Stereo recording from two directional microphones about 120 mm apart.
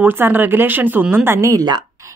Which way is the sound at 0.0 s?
15° right (ahead or behind).